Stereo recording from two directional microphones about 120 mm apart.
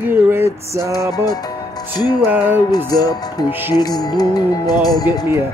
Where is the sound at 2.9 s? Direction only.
30° left (ahead or behind).